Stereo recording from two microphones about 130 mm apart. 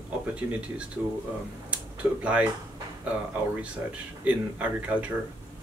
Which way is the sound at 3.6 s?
10° right (ahead or behind).